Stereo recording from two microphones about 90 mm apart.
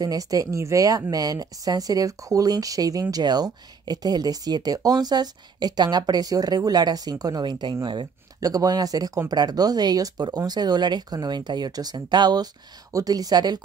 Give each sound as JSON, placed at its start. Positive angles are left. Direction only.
{"t": 0.0, "sound": "speech", "side_deg": -40}
{"t": 7.8, "sound": "speech", "side_deg": -65}
{"t": 8.4, "sound": "speech", "side_deg": -45}